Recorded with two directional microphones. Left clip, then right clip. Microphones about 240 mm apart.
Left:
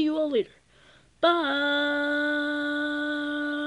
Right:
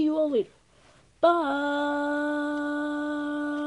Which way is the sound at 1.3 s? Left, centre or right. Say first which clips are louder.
Left 1 dB; left.